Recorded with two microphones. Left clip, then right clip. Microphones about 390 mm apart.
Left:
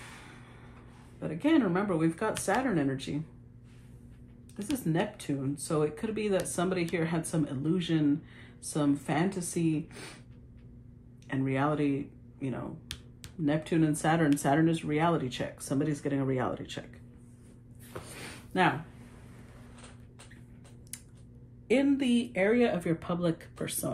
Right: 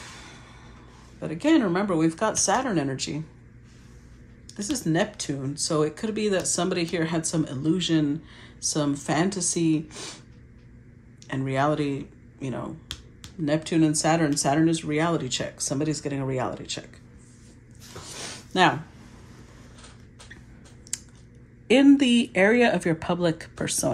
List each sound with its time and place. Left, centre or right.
1.2 s speech: centre
4.6 s speech: centre
11.2 s speech: centre
20.9 s a sound: centre
21.6 s speech: centre